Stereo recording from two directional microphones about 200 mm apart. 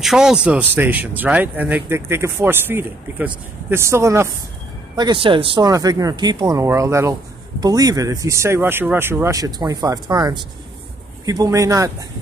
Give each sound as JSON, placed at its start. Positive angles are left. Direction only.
{"t": 0.0, "sound": "speech", "side_deg": 0}